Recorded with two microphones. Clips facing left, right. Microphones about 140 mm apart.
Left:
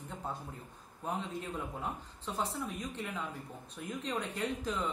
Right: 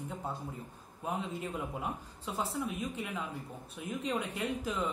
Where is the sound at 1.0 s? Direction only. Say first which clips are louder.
Right 1 dB; 10° right (ahead or behind).